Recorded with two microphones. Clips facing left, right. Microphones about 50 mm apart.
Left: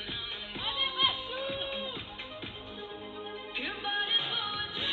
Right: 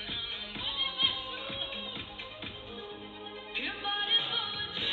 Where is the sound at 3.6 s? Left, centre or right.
Left.